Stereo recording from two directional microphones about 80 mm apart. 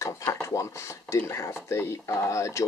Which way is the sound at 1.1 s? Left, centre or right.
Left.